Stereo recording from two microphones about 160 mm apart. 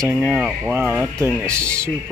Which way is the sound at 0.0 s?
15° right (ahead or behind).